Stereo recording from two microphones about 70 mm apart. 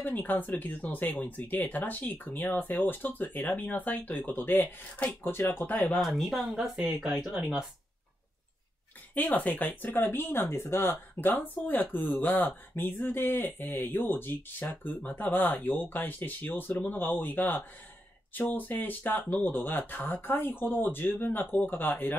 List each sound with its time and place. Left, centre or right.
0.0 s speech: left
5.7 s speech: left
5.9 s speech: centre
9.1 s speech: left
9.9 s speech: left